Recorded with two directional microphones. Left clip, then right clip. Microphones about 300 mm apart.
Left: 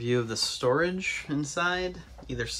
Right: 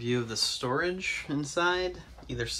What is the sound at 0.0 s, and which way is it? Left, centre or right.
Speech, centre.